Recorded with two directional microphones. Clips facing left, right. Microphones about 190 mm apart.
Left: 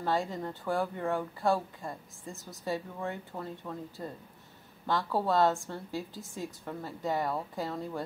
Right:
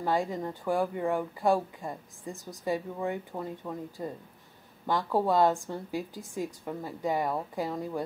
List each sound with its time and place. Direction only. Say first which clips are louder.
0.0 s speech: right 2 dB; 15° right (ahead or behind)